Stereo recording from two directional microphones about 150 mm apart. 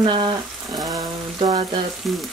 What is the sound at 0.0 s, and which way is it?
Frying, 30° right (ahead or behind).